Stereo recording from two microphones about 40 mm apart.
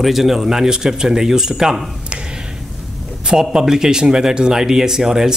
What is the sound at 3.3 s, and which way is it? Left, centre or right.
Speech, centre.